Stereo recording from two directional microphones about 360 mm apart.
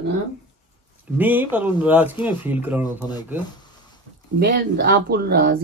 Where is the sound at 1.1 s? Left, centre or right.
Centre.